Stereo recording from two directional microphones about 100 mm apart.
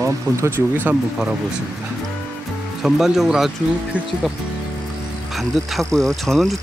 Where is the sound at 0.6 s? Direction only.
20° right (ahead or behind).